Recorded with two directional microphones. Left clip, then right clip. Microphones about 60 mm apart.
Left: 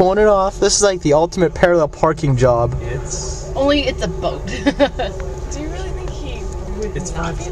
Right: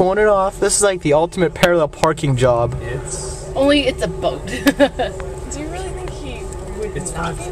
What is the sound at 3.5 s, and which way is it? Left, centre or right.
Speech, right.